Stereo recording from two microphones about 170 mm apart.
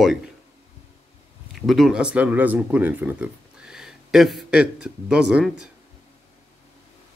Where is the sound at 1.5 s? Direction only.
Centre (ahead or behind).